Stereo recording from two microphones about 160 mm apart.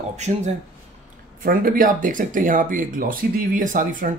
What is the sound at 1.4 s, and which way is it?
Speech, 65° right (ahead or behind).